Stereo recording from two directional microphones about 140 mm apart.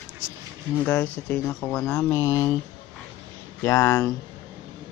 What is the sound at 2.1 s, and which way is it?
Speech, 20° left (ahead or behind).